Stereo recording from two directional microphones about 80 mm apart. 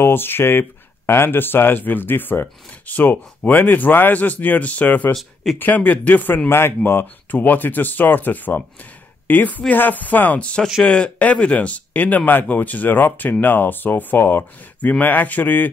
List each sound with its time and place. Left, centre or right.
0.0 s speech: left
5.1 s speech: centre
5.6 s speech: left